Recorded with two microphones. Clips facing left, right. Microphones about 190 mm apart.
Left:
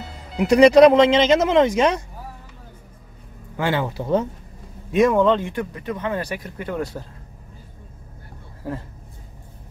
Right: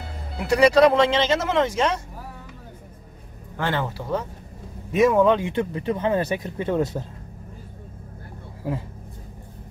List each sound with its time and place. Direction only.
0.4 s speech: 20° left (ahead or behind)
3.5 s speech: 10° left (ahead or behind)
4.9 s speech: 5° right (ahead or behind)
5.5 s speech: 25° right (ahead or behind)